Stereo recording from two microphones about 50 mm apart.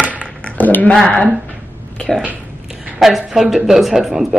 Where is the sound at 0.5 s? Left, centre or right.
Left.